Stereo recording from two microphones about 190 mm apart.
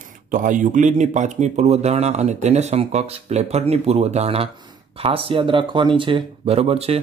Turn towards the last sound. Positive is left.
turn(degrees=-30)  # may be behind; listen again after turning